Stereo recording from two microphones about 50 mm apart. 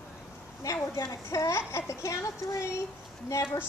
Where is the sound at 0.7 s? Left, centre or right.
Left.